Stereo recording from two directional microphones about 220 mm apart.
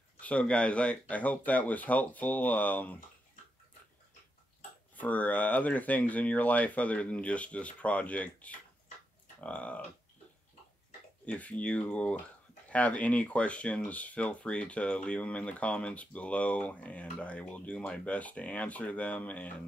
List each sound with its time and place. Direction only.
0.2 s speech: 5° left (ahead or behind)
4.9 s speech: 5° left (ahead or behind)
11.2 s speech: 5° left (ahead or behind)